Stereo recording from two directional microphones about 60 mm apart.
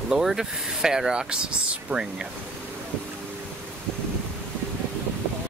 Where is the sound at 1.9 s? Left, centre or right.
Right.